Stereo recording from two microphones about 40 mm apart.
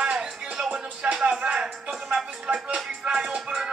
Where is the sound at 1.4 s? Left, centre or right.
Centre.